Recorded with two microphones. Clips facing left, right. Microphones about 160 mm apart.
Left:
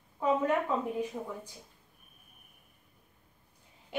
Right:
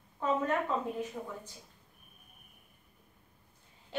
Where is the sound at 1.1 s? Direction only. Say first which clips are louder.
Left 2 dB; 10° left (ahead or behind).